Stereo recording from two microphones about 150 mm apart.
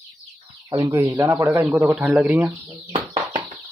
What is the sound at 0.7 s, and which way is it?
Speech, 20° right (ahead or behind).